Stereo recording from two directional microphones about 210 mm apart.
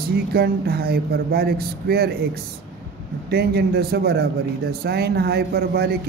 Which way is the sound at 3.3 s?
50° right (ahead or behind).